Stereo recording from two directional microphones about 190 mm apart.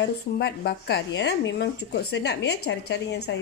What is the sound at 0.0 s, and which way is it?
A woman's voice, 60° left (ahead or behind).